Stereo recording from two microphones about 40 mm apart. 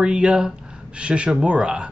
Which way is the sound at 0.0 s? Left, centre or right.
Right.